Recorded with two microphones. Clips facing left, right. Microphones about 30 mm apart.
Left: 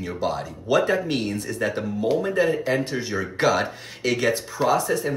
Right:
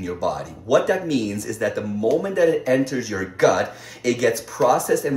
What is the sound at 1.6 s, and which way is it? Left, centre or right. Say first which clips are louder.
Speech: right 3 dB; centre.